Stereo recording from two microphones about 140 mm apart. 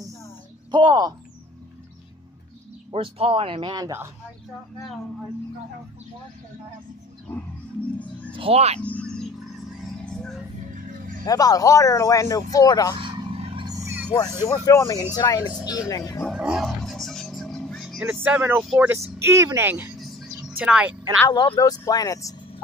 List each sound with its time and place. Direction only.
0.7 s speech: 35° right (ahead or behind)
2.9 s speech: 40° right (ahead or behind); by 4.1 s 25° right (ahead or behind)
8.3 s speech: 40° right (ahead or behind)
8.8 s a sound: 10° left (ahead or behind)
10.7 s music: 75° right (ahead or behind)
11.2 s speech: 25° left (ahead or behind)
13.0 s vehicle: 40° right (ahead or behind)
13.7 s vehicle: 20° right (ahead or behind)
14.4 s speech: 25° left (ahead or behind)
16.3 s roaring cats: 5° right (ahead or behind)
18.1 s speech: 15° right (ahead or behind)
20.0 s music: centre (ahead or behind)
21.3 s speech: 30° left (ahead or behind)